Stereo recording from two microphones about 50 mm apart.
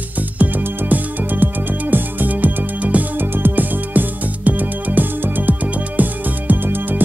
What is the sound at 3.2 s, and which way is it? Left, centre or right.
Music, right.